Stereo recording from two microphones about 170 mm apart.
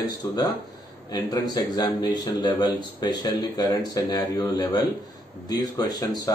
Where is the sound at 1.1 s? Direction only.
25° left (ahead or behind).